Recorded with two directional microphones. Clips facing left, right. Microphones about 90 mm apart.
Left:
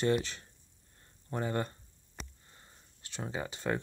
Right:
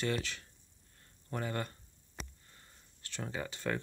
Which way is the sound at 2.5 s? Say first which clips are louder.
Left 2 dB; 20° left (ahead or behind).